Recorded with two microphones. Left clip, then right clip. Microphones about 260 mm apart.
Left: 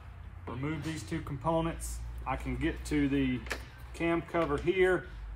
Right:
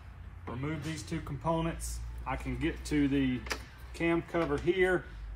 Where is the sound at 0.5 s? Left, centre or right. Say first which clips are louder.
Left 1 dB; centre.